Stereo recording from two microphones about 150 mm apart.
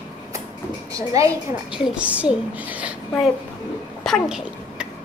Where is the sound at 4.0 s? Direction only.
Centre (ahead or behind).